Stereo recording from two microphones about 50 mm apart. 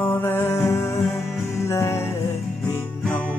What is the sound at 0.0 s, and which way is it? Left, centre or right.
Music, left.